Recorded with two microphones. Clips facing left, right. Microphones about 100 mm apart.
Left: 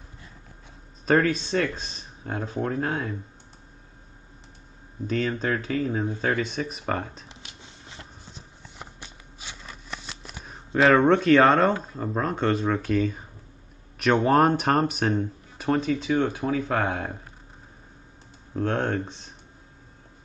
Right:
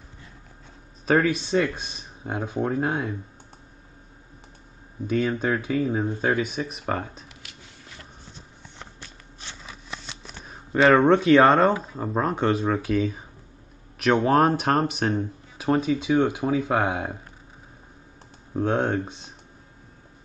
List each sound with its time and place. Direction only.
1.0 s speech: 5° right (ahead or behind)
5.0 s speech: 10° right (ahead or behind)
7.2 s a sound: 25° left (ahead or behind)
8.7 s a sound: 10° left (ahead or behind)
9.6 s speech: 5° right (ahead or behind)
18.7 s speech: 5° right (ahead or behind)